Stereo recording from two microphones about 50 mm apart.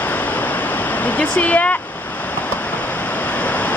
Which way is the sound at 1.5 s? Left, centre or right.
Left.